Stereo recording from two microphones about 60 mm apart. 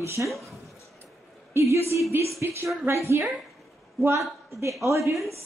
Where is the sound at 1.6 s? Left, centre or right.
Right.